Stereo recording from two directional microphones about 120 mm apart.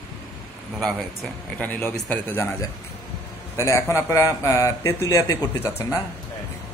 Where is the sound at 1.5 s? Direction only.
15° left (ahead or behind).